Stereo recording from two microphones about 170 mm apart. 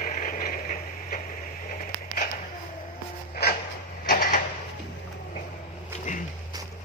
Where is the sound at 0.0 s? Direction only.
55° left (ahead or behind).